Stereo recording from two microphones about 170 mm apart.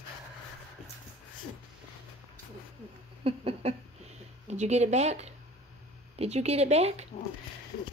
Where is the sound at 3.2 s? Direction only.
35° right (ahead or behind).